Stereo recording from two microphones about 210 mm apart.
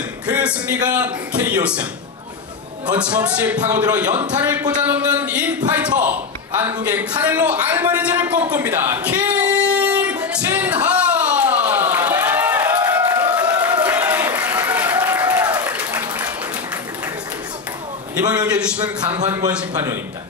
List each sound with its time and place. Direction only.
0.3 s a man's voice: 5° right (ahead or behind)
3.0 s speech: 5° right (ahead or behind)
8.5 s singing: 10° right (ahead or behind)
13.7 s applause: 5° right (ahead or behind)
18.5 s a man's voice: 5° right (ahead or behind)
18.9 s speech: 25° right (ahead or behind)